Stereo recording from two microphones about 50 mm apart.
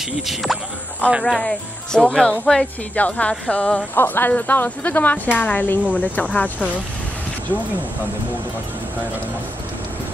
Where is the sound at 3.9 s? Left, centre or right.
Left.